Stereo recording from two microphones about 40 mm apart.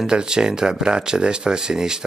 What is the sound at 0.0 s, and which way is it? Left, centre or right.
Speech, centre.